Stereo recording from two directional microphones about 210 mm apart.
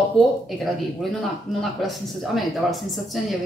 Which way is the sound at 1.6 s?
Centre (ahead or behind).